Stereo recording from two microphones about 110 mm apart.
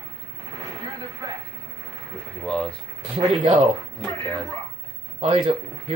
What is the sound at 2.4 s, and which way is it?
Speech, 10° left (ahead or behind).